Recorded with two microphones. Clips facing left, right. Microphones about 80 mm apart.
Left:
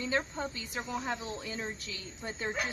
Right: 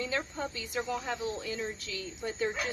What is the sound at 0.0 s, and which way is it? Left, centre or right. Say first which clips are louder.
A woman's voice: left 1 dB; left.